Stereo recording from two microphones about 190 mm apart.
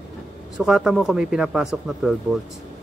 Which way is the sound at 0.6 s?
Centre (ahead or behind).